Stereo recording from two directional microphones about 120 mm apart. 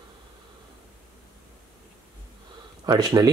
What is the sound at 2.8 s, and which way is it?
Speech, 35° right (ahead or behind).